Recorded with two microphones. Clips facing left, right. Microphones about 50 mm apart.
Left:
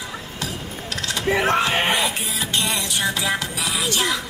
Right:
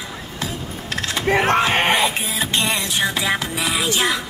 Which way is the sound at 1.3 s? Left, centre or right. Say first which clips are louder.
Right 3 dB; right.